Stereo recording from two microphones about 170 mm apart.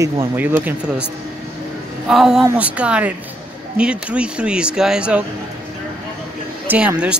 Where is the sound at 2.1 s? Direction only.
Centre (ahead or behind).